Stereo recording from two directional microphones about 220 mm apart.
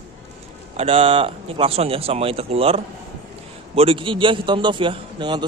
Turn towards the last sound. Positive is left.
turn(degrees=-20)  # may be behind; listen again after turning